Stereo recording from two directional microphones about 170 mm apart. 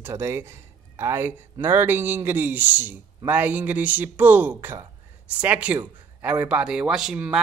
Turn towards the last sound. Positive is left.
turn(degrees=-5)  # may be behind; listen again after turning